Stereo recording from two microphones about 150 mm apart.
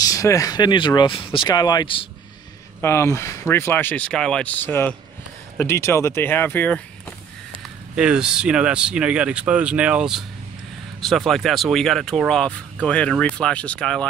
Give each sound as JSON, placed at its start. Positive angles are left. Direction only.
{"t": 0.0, "sound": "speech", "side_deg": 20}
{"t": 2.8, "sound": "speech", "side_deg": 15}
{"t": 7.9, "sound": "speech", "side_deg": -5}